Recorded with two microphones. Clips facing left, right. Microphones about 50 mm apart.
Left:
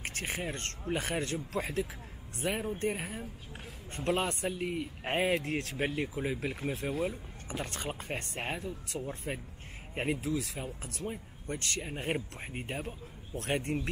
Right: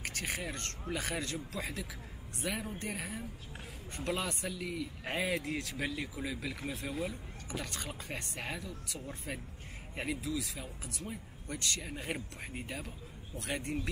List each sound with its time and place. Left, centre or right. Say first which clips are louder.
0.0 s speech: left 2 dB; left
6.9 s speech: left 4 dB; centre
7.4 s speech: left 4 dB; left
11.1 s speech: left 6 dB; left